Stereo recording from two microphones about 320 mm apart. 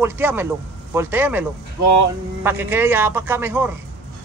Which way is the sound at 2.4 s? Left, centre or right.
Centre.